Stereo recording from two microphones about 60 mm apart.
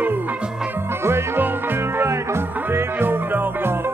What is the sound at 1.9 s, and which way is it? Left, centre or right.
Music, right.